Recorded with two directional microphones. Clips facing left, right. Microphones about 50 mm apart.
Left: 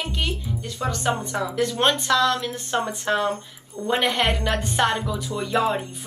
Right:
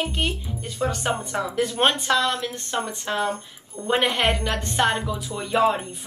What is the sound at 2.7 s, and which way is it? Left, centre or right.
Speech, left.